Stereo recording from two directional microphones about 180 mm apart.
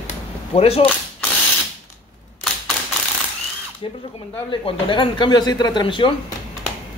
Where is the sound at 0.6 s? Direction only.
35° left (ahead or behind).